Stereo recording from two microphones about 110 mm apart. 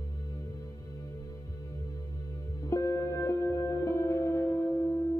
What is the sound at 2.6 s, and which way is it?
Music, 30° left (ahead or behind).